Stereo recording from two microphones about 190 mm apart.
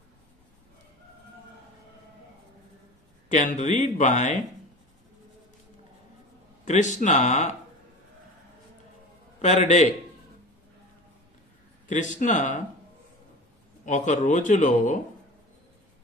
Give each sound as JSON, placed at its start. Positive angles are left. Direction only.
{"t": 3.3, "sound": "speech", "side_deg": 40}
{"t": 6.6, "sound": "speech", "side_deg": 40}
{"t": 9.4, "sound": "speech", "side_deg": 35}
{"t": 11.9, "sound": "speech", "side_deg": 40}
{"t": 13.8, "sound": "speech", "side_deg": 40}